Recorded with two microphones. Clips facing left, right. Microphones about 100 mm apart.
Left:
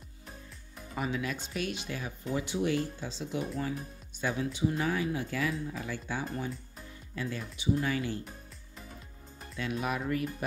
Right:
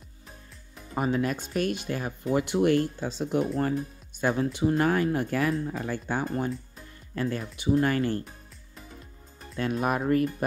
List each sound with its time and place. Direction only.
0.9 s speech: 45° right (ahead or behind)
2.3 s speech: 60° right (ahead or behind)
9.6 s speech: 45° right (ahead or behind)